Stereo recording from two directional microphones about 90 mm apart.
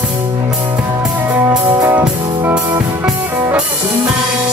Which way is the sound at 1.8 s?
25° right (ahead or behind).